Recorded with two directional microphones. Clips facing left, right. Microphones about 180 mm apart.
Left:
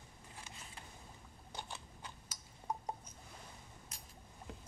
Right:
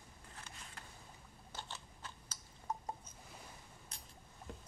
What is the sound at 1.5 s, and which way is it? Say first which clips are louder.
Typing: left 2 dB; 15° left (ahead or behind).